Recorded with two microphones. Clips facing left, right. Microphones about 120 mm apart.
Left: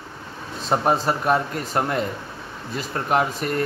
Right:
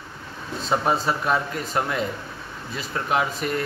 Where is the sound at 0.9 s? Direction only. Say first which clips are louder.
Left 4 dB; 45° left (ahead or behind).